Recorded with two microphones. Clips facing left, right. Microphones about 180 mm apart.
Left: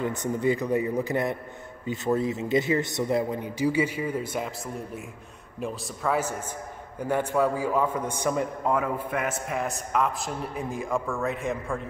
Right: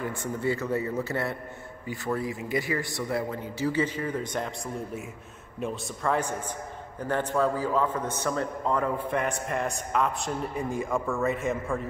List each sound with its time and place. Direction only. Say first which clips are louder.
0.0 s a man's voice: left 4 dB; 20° left (ahead or behind)
5.6 s a man's voice: even; 5° left (ahead or behind)